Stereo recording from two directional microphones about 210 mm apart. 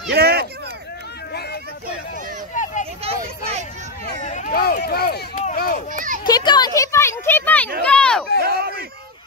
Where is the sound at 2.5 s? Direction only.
35° left (ahead or behind).